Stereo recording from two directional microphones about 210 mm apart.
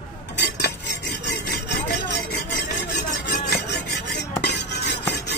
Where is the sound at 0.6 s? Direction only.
55° left (ahead or behind).